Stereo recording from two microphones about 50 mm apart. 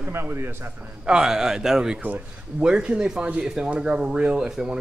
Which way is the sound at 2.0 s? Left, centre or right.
Right.